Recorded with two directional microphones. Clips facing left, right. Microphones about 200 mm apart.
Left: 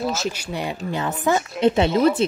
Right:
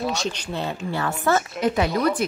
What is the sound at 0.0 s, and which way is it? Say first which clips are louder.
Speech: left 1 dB; centre (ahead or behind).